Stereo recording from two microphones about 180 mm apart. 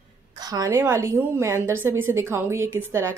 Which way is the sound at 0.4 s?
20° right (ahead or behind).